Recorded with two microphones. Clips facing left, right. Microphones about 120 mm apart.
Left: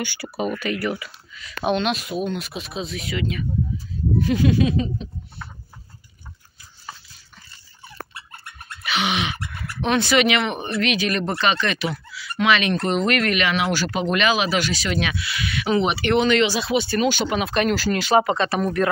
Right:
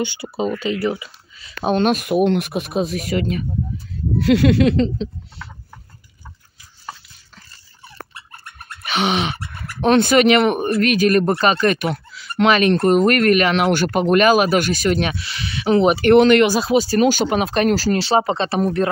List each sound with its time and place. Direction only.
0.0 s speech: 20° right (ahead or behind); by 3.4 s 45° right (ahead or behind)
3.7 s goat: 80° right
8.8 s speech: 40° right (ahead or behind)